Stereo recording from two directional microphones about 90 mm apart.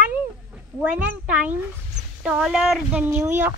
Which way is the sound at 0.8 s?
15° right (ahead or behind).